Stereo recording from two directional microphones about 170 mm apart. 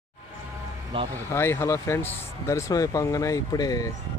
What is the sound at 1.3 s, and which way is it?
Speech, 15° left (ahead or behind).